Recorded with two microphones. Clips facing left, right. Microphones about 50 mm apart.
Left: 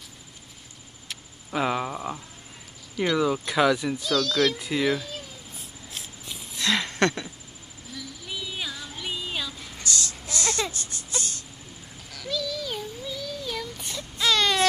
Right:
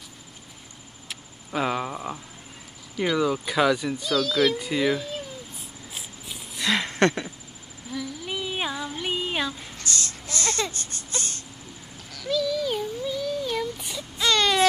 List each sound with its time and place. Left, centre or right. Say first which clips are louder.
1.0 s a sound: even; centre
3.0 s speech: even; centre
4.1 s speech: right 1 dB; centre
5.9 s a sound: even; centre
6.8 s speech: right 2 dB; right
7.9 s child singing: right 8 dB; centre
8.3 s child singing: right 4 dB; right
9.8 s baby cry: even; right
12.1 s a sound: right 5 dB; centre